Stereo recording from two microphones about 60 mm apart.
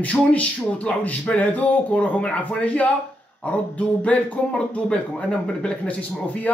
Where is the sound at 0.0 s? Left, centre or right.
Left.